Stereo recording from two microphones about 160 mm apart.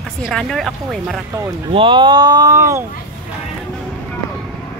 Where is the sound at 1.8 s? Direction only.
30° right (ahead or behind).